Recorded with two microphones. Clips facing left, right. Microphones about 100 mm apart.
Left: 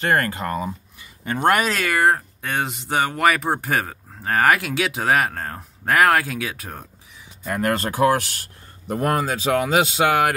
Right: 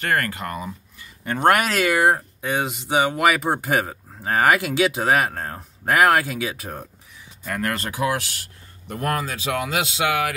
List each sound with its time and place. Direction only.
0.0 s speech: 30° left (ahead or behind)
1.5 s speech: 5° right (ahead or behind)
7.4 s speech: 25° left (ahead or behind)
7.8 s speech: 40° left (ahead or behind)